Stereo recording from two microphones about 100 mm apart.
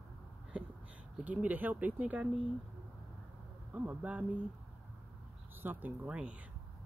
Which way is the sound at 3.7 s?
15° right (ahead or behind).